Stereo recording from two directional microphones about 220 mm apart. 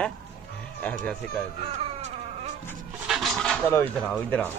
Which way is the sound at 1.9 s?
30° right (ahead or behind).